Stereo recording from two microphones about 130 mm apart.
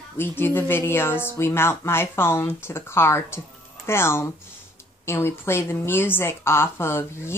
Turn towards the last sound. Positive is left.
turn(degrees=20)  # may be behind; listen again after turning